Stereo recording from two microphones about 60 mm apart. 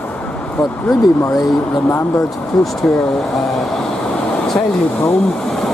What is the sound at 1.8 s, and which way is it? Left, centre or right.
Speech, left.